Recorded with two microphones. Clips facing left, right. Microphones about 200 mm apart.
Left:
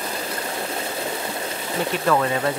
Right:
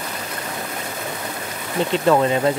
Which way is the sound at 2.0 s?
25° right (ahead or behind).